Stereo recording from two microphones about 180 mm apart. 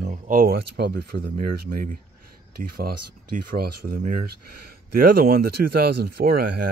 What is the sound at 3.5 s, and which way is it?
Speech, 55° right (ahead or behind).